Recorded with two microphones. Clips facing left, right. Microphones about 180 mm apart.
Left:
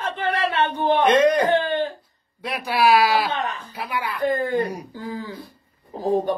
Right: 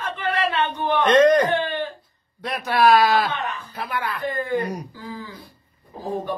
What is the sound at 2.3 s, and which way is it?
Speech, 5° left (ahead or behind).